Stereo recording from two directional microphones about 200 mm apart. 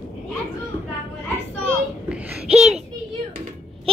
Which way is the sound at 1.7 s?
5° right (ahead or behind).